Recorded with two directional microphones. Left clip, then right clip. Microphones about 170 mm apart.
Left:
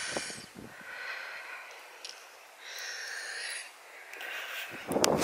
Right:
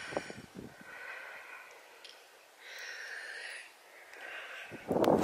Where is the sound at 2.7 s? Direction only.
5° right (ahead or behind).